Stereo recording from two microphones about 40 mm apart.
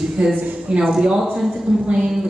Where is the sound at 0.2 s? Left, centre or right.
Centre.